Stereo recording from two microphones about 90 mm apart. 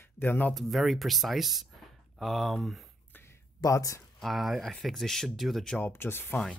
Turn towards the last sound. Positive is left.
turn(degrees=25)  # may be behind; listen again after turning